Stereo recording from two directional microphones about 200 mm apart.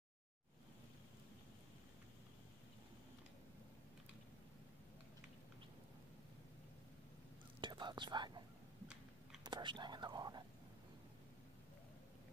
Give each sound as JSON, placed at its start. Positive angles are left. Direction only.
{"t": 7.6, "sound": "whispering", "side_deg": -25}
{"t": 9.5, "sound": "whispering", "side_deg": -25}